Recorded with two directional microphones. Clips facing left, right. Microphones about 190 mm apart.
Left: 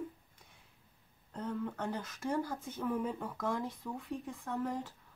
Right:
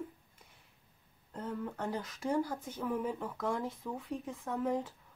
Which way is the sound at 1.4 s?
Centre (ahead or behind).